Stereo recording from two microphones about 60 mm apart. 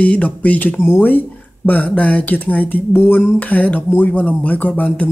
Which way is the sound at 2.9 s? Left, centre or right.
Left.